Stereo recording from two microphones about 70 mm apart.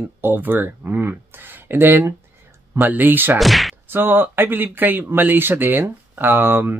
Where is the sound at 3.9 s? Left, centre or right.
Right.